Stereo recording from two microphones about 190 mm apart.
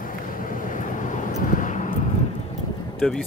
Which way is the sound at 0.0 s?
45° left (ahead or behind).